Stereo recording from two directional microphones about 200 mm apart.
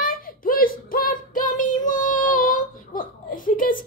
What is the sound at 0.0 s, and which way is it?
Child singing, 45° left (ahead or behind).